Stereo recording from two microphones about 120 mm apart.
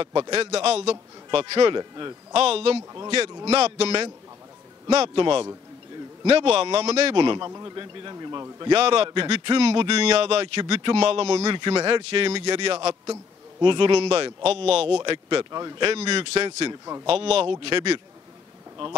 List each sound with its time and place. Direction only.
0.0 s a man's voice: 40° right (ahead or behind)
0.4 s a man's voice: 55° right (ahead or behind); by 2.1 s 35° right (ahead or behind)
2.3 s a man's voice: 55° right (ahead or behind)
6.2 s a man's voice: 55° right (ahead or behind); by 8.7 s 35° right (ahead or behind)
8.7 s a man's voice: 55° right (ahead or behind)
11.5 s a man's voice: 40° right (ahead or behind); by 15.0 s 55° right (ahead or behind)
15.0 s a man's voice: 45° right (ahead or behind)
15.9 s a man's voice: 55° right (ahead or behind)